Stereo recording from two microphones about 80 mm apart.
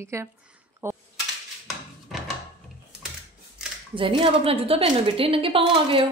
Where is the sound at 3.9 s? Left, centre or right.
Right.